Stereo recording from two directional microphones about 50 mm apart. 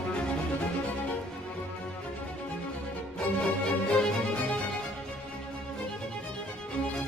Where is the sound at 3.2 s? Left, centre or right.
Left.